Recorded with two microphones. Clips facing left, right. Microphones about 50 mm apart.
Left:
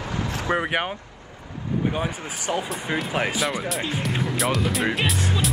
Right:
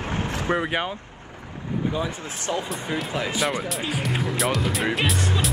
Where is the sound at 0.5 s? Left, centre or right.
Left.